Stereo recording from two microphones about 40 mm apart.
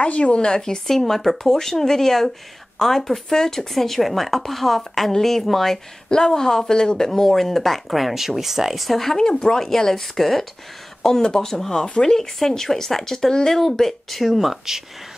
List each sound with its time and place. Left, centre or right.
0.0 s speech: left; by 5.8 s centre
6.0 s speech: centre
9.1 s speech: centre
14.2 s speech: centre